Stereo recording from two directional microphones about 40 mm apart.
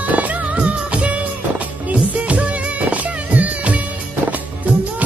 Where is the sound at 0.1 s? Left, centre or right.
Right.